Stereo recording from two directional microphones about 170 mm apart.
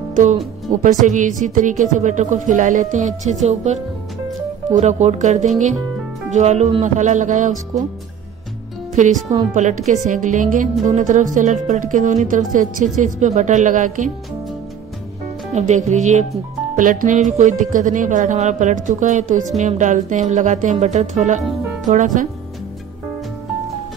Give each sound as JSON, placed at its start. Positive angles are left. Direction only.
{"t": 0.1, "sound": "music", "side_deg": -50}
{"t": 1.0, "sound": "a woman's voice", "side_deg": -45}
{"t": 9.5, "sound": "a woman's voice", "side_deg": -45}
{"t": 15.5, "sound": "a woman's voice", "side_deg": -45}